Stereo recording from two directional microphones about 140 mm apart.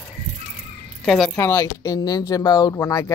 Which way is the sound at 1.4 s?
20° left (ahead or behind).